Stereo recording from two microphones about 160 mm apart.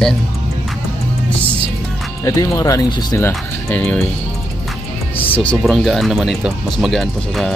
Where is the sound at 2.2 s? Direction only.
20° left (ahead or behind).